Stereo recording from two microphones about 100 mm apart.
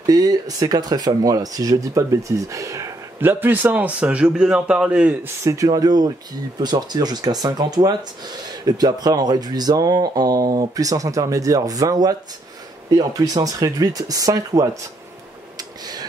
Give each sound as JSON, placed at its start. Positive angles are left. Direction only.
{"t": 0.0, "sound": "speech", "side_deg": -40}
{"t": 3.2, "sound": "a man's voice", "side_deg": -20}
{"t": 5.2, "sound": "speech", "side_deg": -30}
{"t": 15.5, "sound": "a sound", "side_deg": -45}